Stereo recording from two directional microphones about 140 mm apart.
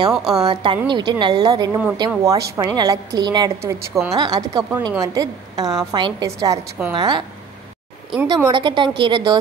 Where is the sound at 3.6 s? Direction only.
20° right (ahead or behind).